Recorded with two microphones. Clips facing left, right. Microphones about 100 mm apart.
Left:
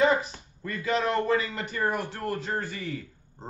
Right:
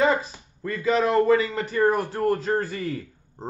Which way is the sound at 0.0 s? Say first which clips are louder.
Right 1 dB; 35° right (ahead or behind).